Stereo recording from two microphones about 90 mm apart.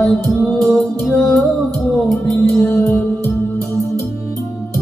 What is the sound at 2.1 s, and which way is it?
Music, 30° left (ahead or behind).